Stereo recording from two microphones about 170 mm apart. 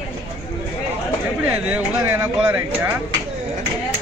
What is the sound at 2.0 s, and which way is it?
Speech, 15° right (ahead or behind).